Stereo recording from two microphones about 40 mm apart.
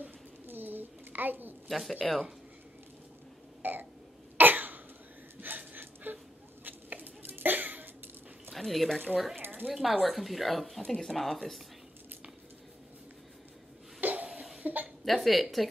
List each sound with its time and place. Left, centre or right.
0.0 s a sound: right
1.7 s speech: centre
3.6 s burping: right
4.4 s cough: right
5.4 s a sound: right
7.3 s cough: right
8.5 s speech: centre
9.4 s a sound: right
9.7 s speech: centre
14.0 s cough: right
14.6 s speech: right
15.0 s speech: centre